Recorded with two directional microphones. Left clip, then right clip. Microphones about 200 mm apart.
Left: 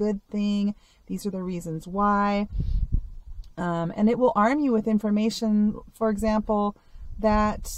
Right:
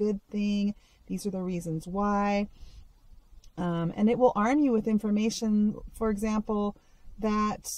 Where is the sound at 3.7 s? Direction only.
10° left (ahead or behind).